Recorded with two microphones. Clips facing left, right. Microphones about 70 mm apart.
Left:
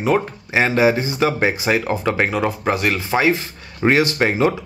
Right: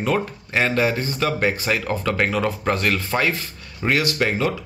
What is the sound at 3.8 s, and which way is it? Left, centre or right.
Speech, left.